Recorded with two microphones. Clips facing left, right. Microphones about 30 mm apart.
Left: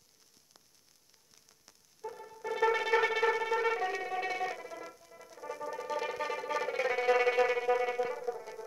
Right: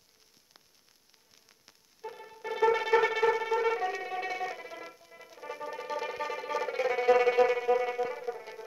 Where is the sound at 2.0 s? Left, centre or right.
Right.